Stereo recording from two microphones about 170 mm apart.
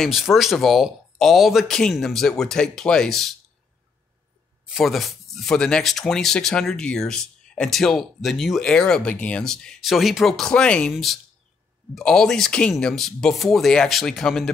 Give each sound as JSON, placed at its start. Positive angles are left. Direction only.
{"t": 0.0, "sound": "speech", "side_deg": 0}
{"t": 4.6, "sound": "speech", "side_deg": 0}